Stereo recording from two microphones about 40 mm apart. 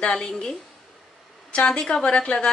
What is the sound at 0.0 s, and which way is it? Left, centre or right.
Speech, left.